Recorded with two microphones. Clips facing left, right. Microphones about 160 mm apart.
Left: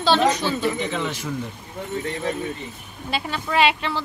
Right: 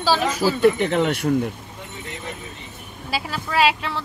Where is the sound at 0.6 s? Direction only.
60° right (ahead or behind).